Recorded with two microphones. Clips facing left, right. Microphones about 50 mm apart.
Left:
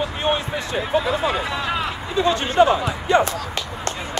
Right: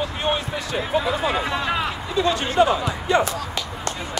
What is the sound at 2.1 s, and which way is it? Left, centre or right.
Speech, left.